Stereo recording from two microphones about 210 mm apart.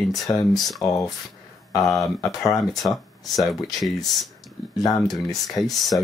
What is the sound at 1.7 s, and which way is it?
Speech, 15° left (ahead or behind).